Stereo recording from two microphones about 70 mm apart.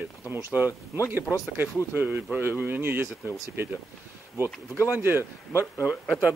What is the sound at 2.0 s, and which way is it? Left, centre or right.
Speech, right.